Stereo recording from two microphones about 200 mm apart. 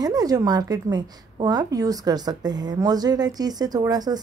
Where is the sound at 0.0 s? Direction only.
20° right (ahead or behind).